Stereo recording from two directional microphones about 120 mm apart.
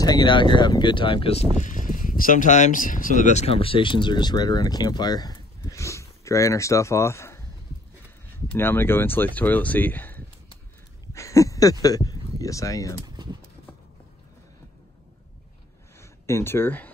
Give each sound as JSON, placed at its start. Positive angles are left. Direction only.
{"t": 0.0, "sound": "speech", "side_deg": 35}
{"t": 1.6, "sound": "speech", "side_deg": 90}
{"t": 8.5, "sound": "speech", "side_deg": 20}
{"t": 11.1, "sound": "a sound", "side_deg": 25}
{"t": 11.8, "sound": "speech", "side_deg": 30}
{"t": 13.0, "sound": "pigeon", "side_deg": -35}
{"t": 16.0, "sound": "speech", "side_deg": 25}